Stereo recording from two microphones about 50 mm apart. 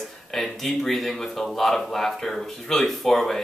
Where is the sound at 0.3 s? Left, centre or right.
Centre.